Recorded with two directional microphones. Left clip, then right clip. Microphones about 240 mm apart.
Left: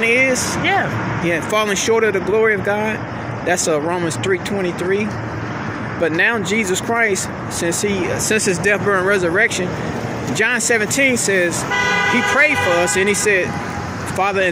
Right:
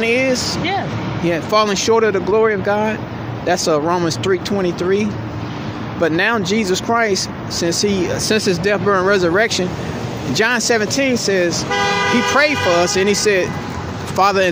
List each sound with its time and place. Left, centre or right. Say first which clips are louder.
0.0 s vehicle: left 1 dB; centre
1.2 s speech: right 3 dB; centre
6.0 s speech: right 1 dB; centre
10.7 s speech: left 1 dB; centre
11.7 s speech: even; right
12.3 s speech: even; centre